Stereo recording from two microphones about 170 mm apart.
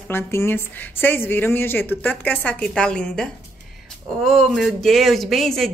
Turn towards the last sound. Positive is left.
turn(degrees=0)  # may be behind; listen again after turning